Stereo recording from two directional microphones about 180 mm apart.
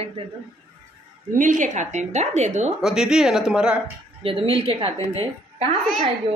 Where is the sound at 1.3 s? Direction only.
45° right (ahead or behind).